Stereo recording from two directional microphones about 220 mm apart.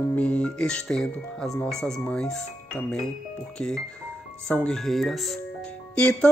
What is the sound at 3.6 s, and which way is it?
Speech, centre (ahead or behind).